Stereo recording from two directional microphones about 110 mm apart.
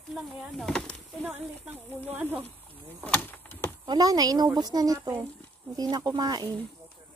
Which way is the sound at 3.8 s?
35° right (ahead or behind).